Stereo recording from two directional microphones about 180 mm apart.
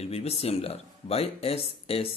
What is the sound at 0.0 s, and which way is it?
Speech, 35° left (ahead or behind).